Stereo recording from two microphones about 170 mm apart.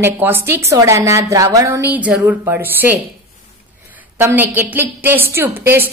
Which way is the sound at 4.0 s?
10° right (ahead or behind).